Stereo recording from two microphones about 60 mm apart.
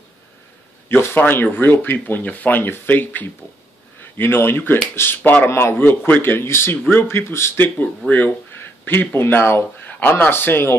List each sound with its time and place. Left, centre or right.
0.8 s speech: left
7.5 s speech: left
9.1 s speech: left
9.8 s speech: left